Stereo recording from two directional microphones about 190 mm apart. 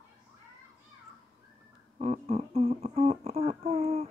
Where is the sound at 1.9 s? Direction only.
35° right (ahead or behind).